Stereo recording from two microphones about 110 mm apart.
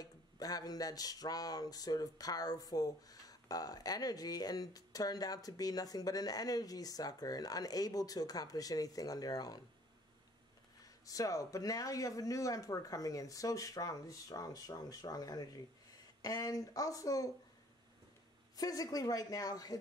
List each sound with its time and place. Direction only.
0.0 s speech: 35° left (ahead or behind)
10.8 s speech: 30° left (ahead or behind)
18.6 s speech: 35° left (ahead or behind)